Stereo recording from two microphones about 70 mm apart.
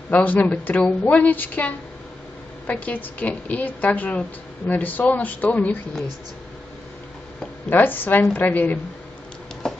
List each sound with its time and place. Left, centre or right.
0.1 s a woman's voice: left
7.7 s a woman's voice: left
9.6 s a sound: centre